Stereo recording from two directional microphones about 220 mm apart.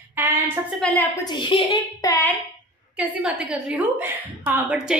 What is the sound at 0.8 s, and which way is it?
Speech, 5° left (ahead or behind).